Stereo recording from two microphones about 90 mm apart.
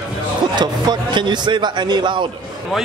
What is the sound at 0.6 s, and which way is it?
A man's voice, 55° right (ahead or behind).